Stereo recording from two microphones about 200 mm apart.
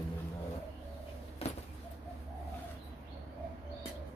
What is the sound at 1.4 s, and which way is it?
Bird, 30° left (ahead or behind).